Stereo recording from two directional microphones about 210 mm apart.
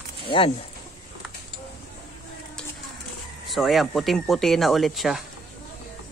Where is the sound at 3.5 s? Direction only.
Centre (ahead or behind).